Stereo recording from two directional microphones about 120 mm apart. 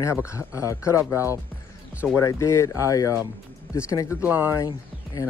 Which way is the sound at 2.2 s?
25° left (ahead or behind).